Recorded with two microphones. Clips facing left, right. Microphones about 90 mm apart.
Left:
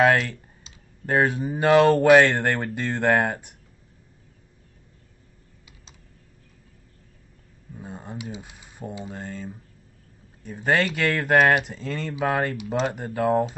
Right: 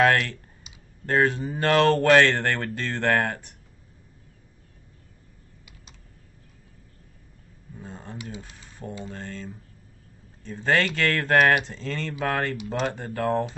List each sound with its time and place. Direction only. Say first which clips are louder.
0.0 s speech: left 1 dB; 15° left (ahead or behind)
7.7 s speech: left 2 dB; 15° left (ahead or behind)